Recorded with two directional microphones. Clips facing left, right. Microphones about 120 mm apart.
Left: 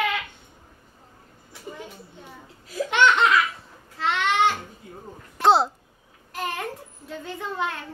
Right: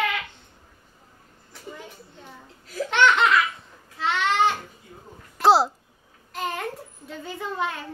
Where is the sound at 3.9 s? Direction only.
Centre (ahead or behind).